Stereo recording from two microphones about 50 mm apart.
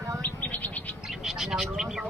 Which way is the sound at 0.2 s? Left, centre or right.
Left.